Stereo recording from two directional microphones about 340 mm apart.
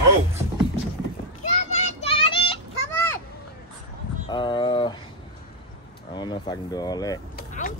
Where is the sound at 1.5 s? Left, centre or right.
Centre.